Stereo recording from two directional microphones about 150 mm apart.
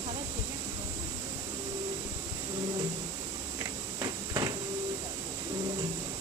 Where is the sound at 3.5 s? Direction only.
25° right (ahead or behind).